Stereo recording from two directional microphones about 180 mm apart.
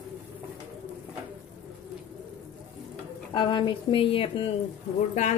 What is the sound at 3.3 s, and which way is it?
Speech, 25° left (ahead or behind).